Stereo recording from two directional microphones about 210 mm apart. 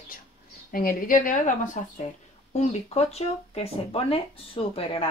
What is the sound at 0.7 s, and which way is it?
A woman's voice, 40° left (ahead or behind).